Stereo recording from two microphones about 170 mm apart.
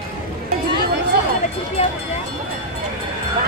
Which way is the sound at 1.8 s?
40° left (ahead or behind).